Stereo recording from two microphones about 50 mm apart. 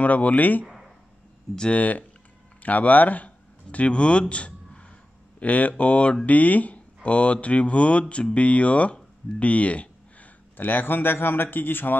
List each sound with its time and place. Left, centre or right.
0.0 s speech: left
0.7 s a sound: centre
1.7 s speech: left
10.6 s speech: left